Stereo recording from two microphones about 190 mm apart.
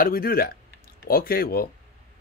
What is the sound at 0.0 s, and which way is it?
Speech, 50° left (ahead or behind).